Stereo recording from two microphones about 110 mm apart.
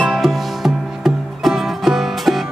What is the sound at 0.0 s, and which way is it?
Music, centre (ahead or behind).